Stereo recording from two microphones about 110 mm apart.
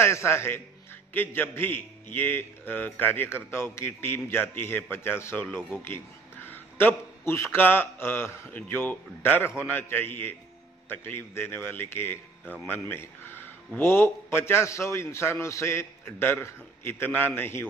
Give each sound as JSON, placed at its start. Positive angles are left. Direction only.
{"t": 0.0, "sound": "a man's voice", "side_deg": 25}